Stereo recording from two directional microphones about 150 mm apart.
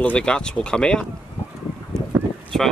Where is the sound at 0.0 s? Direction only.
5° left (ahead or behind).